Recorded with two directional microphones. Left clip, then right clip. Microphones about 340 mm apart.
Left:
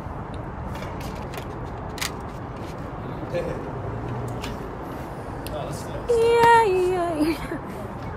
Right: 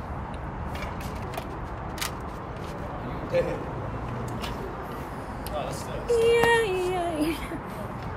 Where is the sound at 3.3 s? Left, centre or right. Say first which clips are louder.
Right 3 dB; right.